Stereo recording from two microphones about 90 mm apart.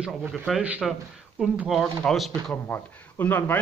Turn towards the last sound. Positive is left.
turn(degrees=20)  # may be behind; listen again after turning